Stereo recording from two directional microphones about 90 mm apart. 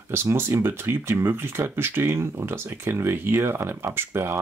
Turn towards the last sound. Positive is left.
turn(degrees=-25)  # may be behind; listen again after turning